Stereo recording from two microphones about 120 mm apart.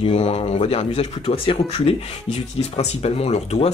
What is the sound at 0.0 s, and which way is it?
Speech, 60° left (ahead or behind).